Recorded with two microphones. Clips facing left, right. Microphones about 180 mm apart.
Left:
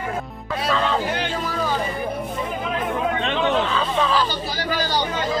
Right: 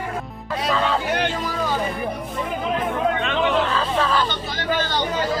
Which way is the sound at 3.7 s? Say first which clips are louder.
Even; centre (ahead or behind).